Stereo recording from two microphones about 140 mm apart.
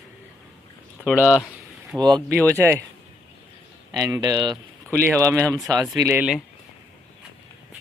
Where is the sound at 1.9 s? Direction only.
20° right (ahead or behind).